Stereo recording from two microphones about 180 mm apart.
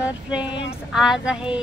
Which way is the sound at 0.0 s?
5° right (ahead or behind).